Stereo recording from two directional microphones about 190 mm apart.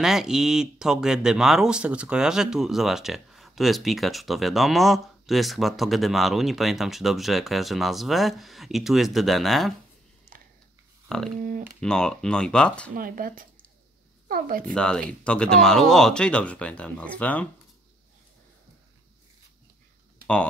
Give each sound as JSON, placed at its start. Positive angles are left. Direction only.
{"t": 0.0, "sound": "speech", "side_deg": 0}
{"t": 11.3, "sound": "a sound", "side_deg": -45}
{"t": 11.8, "sound": "speech", "side_deg": 5}
{"t": 12.9, "sound": "a woman's voice", "side_deg": -50}
{"t": 14.7, "sound": "speech", "side_deg": 5}